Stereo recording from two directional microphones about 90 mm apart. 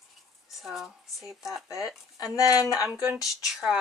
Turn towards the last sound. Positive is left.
turn(degrees=-5)  # may be behind; listen again after turning